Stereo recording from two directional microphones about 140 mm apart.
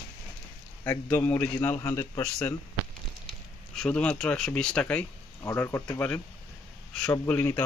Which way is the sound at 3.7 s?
5° left (ahead or behind).